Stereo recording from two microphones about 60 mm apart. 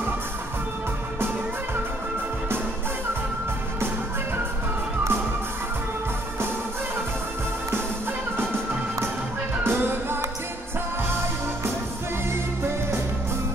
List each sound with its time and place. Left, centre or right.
9.6 s music: right